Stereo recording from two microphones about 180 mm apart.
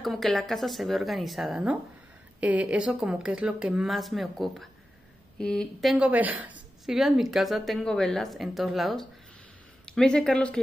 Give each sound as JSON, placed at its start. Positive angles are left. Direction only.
{"t": 0.0, "sound": "a woman's voice", "side_deg": 0}